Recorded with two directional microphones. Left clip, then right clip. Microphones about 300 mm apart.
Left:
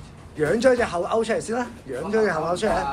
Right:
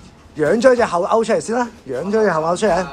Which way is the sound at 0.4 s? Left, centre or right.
Centre.